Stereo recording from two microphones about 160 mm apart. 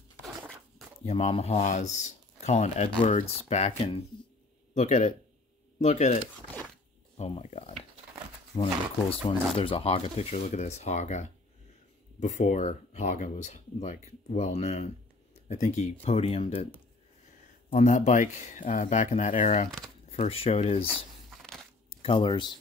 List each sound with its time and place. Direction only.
1.0 s speech: 40° left (ahead or behind)
7.2 s speech: 40° left (ahead or behind)
8.5 s speech: 25° left (ahead or behind)
17.6 s speech: 50° left (ahead or behind)
22.0 s speech: 30° left (ahead or behind)